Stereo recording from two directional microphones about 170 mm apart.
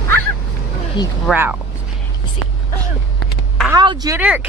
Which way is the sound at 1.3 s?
10° right (ahead or behind).